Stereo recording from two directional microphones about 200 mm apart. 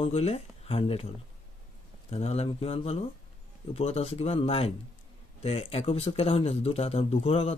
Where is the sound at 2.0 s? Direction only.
30° left (ahead or behind).